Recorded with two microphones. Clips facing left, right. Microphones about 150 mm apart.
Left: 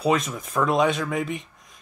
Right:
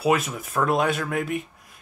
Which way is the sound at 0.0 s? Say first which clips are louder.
Even; 5° right (ahead or behind).